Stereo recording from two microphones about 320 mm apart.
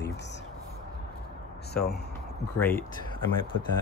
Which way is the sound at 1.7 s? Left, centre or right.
Left.